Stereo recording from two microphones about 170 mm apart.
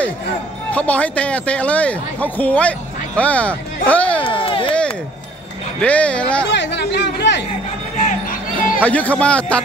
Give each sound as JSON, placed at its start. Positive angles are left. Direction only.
{"t": 0.7, "sound": "speech", "side_deg": 10}
{"t": 4.2, "sound": "a sound", "side_deg": 30}
{"t": 5.8, "sound": "speech", "side_deg": 5}
{"t": 6.5, "sound": "speech", "side_deg": 90}
{"t": 8.0, "sound": "music", "side_deg": 55}
{"t": 8.7, "sound": "speech", "side_deg": 10}